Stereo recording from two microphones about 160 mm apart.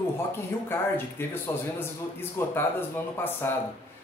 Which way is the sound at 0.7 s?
15° left (ahead or behind).